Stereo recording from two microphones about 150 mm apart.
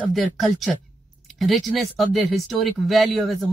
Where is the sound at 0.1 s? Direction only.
Centre (ahead or behind).